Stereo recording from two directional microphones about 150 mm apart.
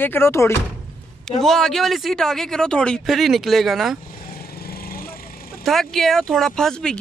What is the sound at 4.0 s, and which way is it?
Vehicle, 75° left (ahead or behind).